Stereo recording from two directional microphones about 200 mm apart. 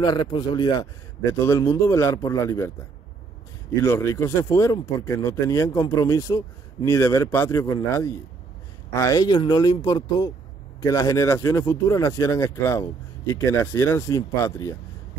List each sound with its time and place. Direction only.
0.0 s speech: 25° left (ahead or behind)
3.8 s speech: 15° left (ahead or behind)